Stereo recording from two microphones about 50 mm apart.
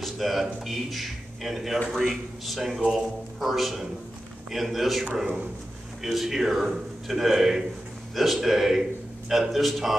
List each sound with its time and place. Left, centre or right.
0.0 s a man's voice: centre